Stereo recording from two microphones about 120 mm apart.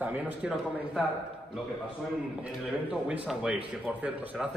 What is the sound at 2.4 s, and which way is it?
A man's voice, 10° right (ahead or behind).